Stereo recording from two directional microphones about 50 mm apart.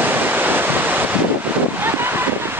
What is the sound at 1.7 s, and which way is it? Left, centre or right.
Wind noise, right.